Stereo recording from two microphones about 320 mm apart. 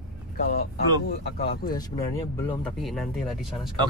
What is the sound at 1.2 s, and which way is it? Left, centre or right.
Speech, left.